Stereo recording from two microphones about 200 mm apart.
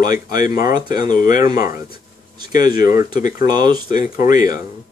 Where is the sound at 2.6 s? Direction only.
45° left (ahead or behind).